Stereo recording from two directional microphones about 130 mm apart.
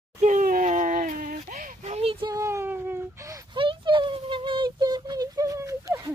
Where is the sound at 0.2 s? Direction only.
80° right.